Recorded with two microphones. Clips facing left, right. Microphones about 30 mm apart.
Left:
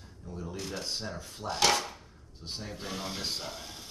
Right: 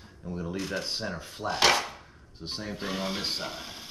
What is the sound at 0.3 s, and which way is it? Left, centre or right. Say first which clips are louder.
Mechanisms: right 6 dB; right.